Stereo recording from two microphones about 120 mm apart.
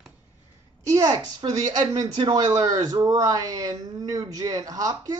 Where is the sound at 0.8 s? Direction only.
30° right (ahead or behind).